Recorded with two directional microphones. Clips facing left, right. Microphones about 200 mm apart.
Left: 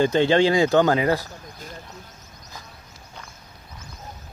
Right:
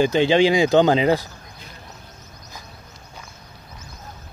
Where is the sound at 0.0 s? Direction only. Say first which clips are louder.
Right 1 dB; 10° right (ahead or behind).